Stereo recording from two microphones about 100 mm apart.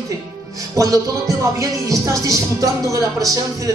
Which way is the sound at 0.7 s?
35° right (ahead or behind).